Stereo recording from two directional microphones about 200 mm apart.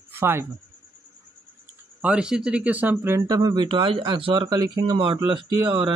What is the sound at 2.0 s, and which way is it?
Speech, 5° right (ahead or behind).